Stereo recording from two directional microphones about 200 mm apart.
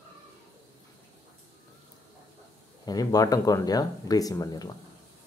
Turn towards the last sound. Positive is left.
turn(degrees=20)  # may be behind; listen again after turning